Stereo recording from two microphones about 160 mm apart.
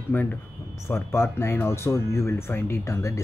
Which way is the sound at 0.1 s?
10° left (ahead or behind).